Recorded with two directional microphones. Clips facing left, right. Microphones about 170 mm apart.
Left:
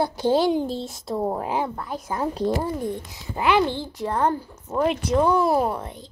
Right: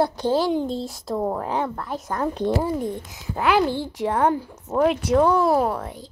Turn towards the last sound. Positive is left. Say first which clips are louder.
# right 1 dB
turn(degrees=15)  # may be behind; listen again after turning